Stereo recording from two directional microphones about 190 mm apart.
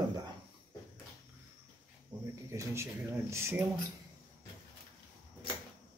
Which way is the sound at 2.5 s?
15° right (ahead or behind).